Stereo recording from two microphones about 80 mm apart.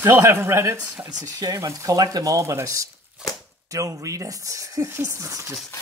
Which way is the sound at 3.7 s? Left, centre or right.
Right.